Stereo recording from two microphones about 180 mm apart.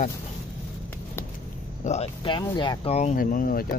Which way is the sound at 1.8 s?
35° left (ahead or behind).